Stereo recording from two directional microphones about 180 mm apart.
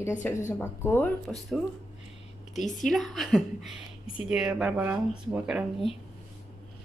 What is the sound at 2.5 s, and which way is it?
Speech, 45° left (ahead or behind).